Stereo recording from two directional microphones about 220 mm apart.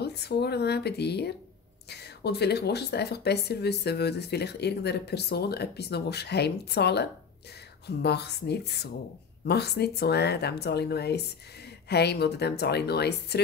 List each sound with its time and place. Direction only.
0.0 s speech: 50° left (ahead or behind)